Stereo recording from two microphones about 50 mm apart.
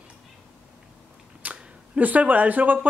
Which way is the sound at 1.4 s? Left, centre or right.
Right.